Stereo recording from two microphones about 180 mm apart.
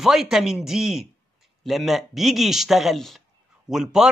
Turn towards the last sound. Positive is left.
turn(degrees=-5)  # may be behind; listen again after turning